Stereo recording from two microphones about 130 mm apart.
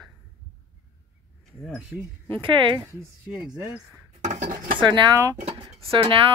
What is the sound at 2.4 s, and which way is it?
Speech, 40° right (ahead or behind).